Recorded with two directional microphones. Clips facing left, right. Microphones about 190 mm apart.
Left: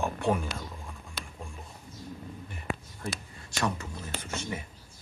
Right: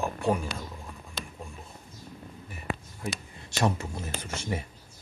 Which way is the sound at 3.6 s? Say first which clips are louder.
Right 4 dB; 25° right (ahead or behind).